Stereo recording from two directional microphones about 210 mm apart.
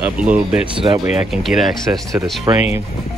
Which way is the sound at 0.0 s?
5° right (ahead or behind).